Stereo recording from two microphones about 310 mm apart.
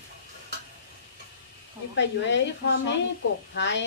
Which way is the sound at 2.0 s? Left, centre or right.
Left.